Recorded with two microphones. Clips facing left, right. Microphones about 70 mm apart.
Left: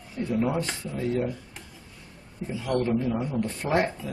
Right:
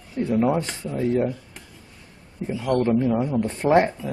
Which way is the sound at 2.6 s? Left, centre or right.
Right.